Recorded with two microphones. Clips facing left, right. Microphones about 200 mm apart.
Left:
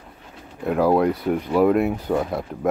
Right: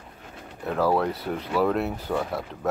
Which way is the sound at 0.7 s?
15° left (ahead or behind).